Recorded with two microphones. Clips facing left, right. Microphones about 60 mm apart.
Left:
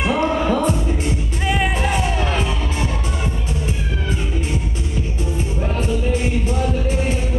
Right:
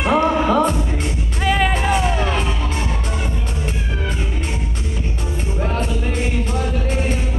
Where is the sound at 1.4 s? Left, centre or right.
Right.